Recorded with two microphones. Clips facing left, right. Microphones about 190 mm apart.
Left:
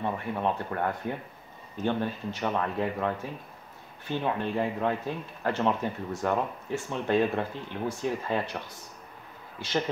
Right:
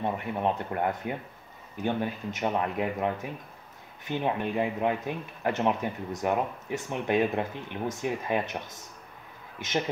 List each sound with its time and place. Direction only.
0.0 s speech: 20° right (ahead or behind)